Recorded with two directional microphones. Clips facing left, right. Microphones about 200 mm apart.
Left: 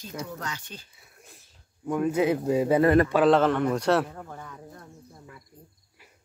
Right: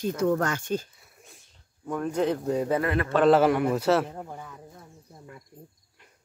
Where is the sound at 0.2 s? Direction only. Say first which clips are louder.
Right 12 dB; 50° right (ahead or behind).